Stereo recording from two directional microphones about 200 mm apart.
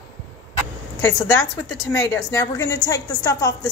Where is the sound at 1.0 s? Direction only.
15° left (ahead or behind).